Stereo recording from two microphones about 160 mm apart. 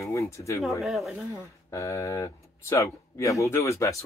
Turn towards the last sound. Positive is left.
turn(degrees=20)  # may be behind; listen again after turning